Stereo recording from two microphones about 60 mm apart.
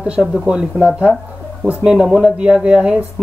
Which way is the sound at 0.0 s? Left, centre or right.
Centre.